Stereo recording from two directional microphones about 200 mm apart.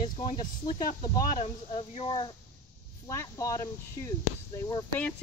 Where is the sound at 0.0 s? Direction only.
35° left (ahead or behind).